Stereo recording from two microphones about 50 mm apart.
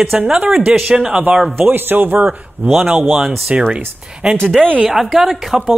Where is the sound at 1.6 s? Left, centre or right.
Right.